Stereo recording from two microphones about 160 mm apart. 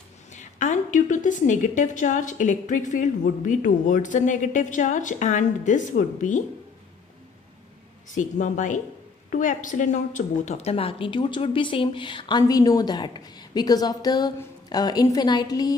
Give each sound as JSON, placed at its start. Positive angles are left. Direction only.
{"t": 0.3, "sound": "a woman's voice", "side_deg": 50}
{"t": 8.1, "sound": "a woman's voice", "side_deg": 50}